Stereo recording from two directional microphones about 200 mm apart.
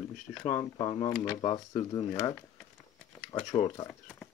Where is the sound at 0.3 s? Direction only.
15° left (ahead or behind).